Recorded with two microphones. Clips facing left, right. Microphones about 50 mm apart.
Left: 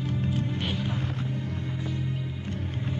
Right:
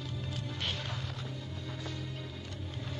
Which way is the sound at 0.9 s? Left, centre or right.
Left.